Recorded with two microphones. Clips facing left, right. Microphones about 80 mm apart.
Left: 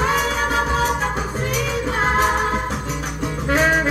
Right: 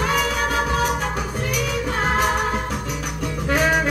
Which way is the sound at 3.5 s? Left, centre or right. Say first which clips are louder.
Left 2 dB; left.